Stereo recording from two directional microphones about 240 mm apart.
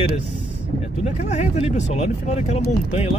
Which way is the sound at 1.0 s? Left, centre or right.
Left.